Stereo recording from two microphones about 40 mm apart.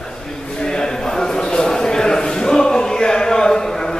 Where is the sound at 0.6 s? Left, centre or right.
Centre.